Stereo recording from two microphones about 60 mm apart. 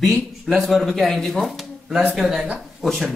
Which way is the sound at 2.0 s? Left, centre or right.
Right.